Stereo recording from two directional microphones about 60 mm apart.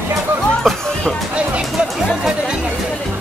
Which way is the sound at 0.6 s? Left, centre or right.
Centre.